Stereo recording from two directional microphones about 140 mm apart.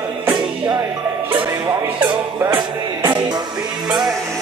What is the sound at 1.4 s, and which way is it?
Music, 25° right (ahead or behind).